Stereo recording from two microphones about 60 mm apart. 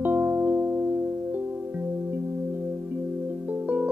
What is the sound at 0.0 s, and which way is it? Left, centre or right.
Music, right.